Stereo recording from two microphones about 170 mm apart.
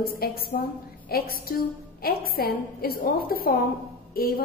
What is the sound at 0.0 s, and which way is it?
A woman's voice, 60° left (ahead or behind).